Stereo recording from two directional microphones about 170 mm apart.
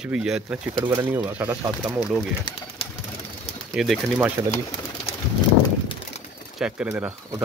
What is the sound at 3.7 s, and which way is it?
Speech, centre (ahead or behind).